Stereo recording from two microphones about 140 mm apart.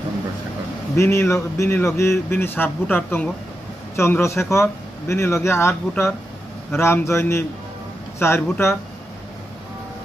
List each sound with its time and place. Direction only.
0.9 s speech: 20° left (ahead or behind)